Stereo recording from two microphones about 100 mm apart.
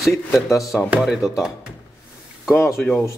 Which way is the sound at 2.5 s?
25° left (ahead or behind).